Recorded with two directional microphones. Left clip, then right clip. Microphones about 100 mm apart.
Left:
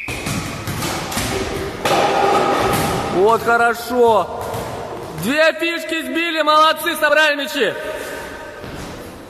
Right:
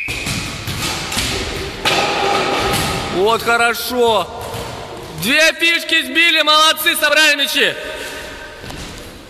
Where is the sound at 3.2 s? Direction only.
Centre (ahead or behind).